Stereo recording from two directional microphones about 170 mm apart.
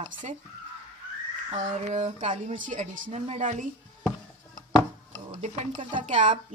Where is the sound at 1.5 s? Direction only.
45° right (ahead or behind).